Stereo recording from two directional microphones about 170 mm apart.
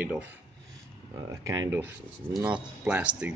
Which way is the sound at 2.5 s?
5° right (ahead or behind).